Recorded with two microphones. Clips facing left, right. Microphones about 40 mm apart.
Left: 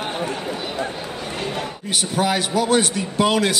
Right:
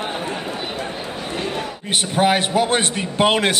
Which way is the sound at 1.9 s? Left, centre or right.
Right.